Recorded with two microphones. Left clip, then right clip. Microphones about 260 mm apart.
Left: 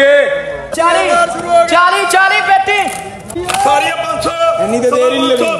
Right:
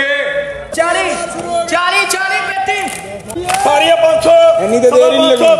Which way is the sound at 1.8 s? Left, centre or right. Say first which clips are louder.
Left 3 dB; centre.